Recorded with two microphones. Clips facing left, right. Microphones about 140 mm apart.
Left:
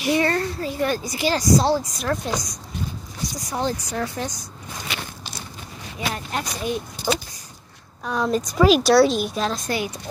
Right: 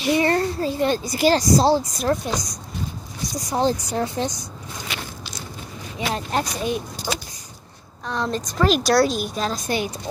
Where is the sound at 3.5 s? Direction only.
30° right (ahead or behind).